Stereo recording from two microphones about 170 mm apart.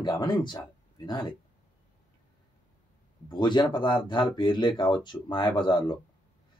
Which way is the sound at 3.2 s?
25° left (ahead or behind).